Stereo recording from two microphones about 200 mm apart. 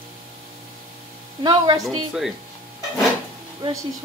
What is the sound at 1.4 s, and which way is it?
Speech, 20° right (ahead or behind).